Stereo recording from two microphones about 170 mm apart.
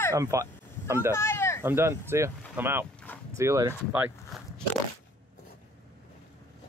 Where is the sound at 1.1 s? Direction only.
15° left (ahead or behind).